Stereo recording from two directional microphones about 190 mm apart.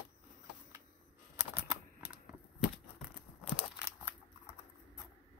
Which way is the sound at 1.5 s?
10° right (ahead or behind).